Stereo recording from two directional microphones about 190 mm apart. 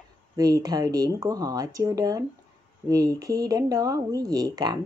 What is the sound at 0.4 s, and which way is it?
Speech, 20° right (ahead or behind).